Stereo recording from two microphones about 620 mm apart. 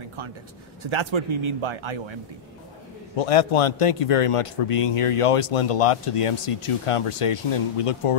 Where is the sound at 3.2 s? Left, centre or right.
Left.